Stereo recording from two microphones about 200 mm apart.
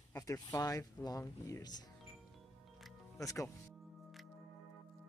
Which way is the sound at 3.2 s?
15° left (ahead or behind).